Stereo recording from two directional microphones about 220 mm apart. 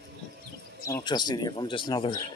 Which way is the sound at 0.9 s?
20° left (ahead or behind).